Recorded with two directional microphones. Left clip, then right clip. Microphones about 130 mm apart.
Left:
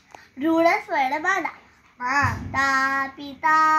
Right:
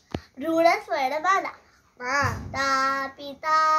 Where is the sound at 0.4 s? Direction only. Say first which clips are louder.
Left 1 dB; 20° right (ahead or behind).